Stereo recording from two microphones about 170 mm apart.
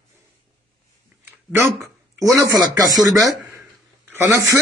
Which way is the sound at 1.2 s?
15° right (ahead or behind).